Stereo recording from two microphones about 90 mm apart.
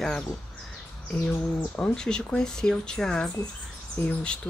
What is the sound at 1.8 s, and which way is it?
Speech, 10° left (ahead or behind).